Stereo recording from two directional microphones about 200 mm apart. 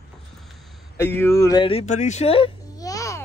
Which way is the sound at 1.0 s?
15° left (ahead or behind).